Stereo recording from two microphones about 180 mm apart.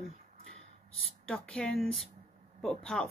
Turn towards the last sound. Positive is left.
turn(degrees=5)  # may be behind; listen again after turning